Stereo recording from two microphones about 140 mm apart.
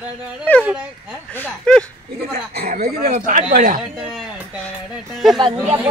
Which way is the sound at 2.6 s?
80° right.